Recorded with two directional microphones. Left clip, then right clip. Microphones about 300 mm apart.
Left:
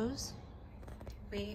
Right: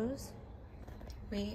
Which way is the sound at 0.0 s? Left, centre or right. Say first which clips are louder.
Even; centre.